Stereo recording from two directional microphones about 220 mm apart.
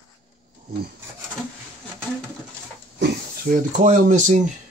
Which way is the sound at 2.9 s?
45° right (ahead or behind).